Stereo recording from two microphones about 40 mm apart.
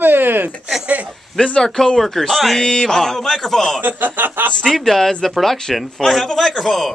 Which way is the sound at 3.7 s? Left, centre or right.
Right.